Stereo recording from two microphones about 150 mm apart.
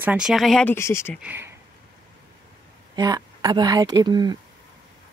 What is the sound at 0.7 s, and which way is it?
Speech, 20° left (ahead or behind).